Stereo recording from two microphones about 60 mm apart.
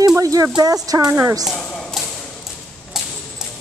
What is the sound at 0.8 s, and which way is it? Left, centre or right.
Speech, right.